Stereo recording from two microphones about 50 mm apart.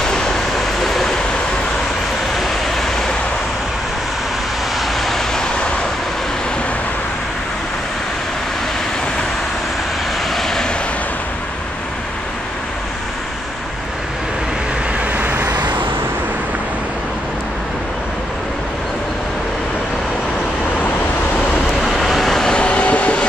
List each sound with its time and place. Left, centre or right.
0.8 s vehicle: centre
2.3 s vehicle: centre
4.7 s vehicle: centre
10.3 s vehicle: centre
15.1 s vehicle: right
21.8 s vehicle: centre
22.5 s vehicle: left